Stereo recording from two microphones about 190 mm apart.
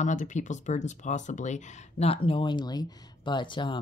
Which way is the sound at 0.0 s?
40° left (ahead or behind).